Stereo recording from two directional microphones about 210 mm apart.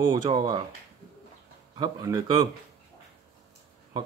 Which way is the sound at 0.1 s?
20° right (ahead or behind).